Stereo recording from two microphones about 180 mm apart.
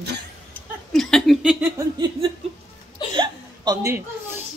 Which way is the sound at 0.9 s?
Centre (ahead or behind).